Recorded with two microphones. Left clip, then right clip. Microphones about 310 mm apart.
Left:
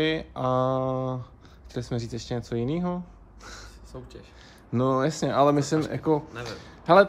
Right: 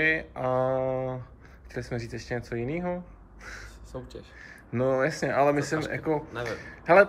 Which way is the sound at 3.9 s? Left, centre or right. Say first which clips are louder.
Right 3 dB; centre.